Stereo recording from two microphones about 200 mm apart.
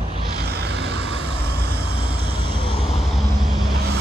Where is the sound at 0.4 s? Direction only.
55° right (ahead or behind).